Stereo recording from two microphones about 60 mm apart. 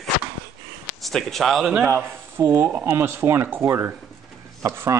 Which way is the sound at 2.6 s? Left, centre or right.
Right.